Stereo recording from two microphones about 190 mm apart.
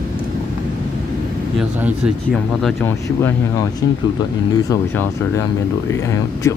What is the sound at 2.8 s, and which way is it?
Speech, 10° left (ahead or behind).